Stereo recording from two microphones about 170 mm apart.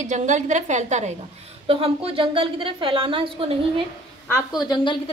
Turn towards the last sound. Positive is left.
turn(degrees=30)  # may be behind; listen again after turning